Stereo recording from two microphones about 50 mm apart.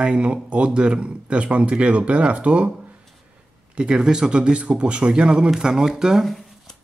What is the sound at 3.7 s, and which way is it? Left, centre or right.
Speech, centre.